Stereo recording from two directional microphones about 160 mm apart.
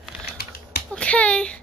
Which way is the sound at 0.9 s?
5° left (ahead or behind).